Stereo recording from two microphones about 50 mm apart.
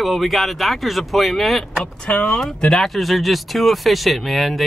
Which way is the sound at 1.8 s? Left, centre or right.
Left.